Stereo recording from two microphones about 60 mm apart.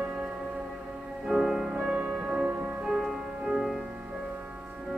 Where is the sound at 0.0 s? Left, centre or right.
Centre.